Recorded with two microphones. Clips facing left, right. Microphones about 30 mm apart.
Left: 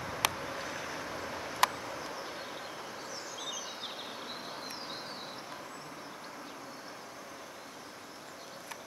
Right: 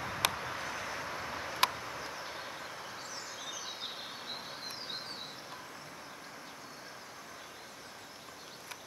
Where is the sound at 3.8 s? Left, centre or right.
Centre.